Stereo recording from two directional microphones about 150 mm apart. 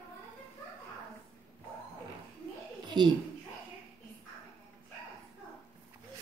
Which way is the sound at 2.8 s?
30° right (ahead or behind).